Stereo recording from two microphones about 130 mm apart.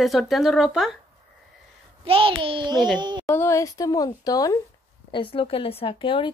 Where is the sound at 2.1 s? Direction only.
45° right (ahead or behind).